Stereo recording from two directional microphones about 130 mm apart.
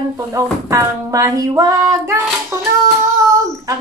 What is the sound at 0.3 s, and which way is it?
Female singing, 25° right (ahead or behind).